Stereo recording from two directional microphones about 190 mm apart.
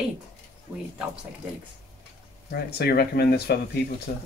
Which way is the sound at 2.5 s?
55° left (ahead or behind).